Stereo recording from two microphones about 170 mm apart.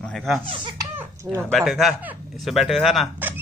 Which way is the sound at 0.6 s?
30° right (ahead or behind).